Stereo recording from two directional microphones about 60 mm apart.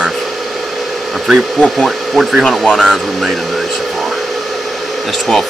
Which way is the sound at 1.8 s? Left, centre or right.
Centre.